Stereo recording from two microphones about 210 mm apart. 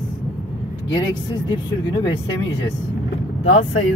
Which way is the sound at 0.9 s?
20° left (ahead or behind).